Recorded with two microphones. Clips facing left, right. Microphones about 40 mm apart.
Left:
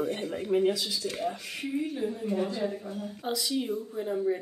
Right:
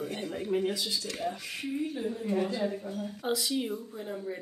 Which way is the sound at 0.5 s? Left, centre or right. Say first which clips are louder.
Left 4 dB; centre.